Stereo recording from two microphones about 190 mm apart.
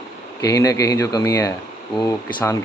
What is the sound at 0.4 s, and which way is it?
Speech, 15° left (ahead or behind).